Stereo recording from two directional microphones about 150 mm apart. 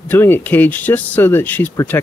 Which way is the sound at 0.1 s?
15° left (ahead or behind).